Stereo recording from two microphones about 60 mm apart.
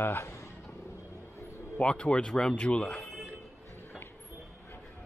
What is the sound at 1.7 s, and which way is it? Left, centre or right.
Speech, left.